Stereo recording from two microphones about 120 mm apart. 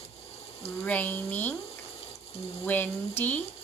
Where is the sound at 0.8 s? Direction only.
15° left (ahead or behind).